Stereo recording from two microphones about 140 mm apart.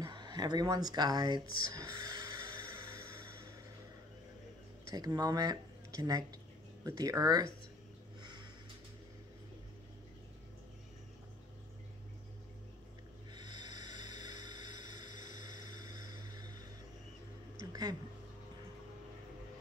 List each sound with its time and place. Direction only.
0.0 s speech: 30° right (ahead or behind)
1.6 s music: 25° right (ahead or behind)
4.9 s speech: 30° right (ahead or behind)
8.2 s a sound: 30° right (ahead or behind)
13.3 s a sound: 30° right (ahead or behind)
15.8 s music: 25° right (ahead or behind)